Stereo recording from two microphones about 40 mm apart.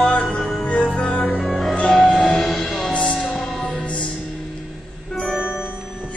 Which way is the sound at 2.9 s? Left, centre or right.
Left.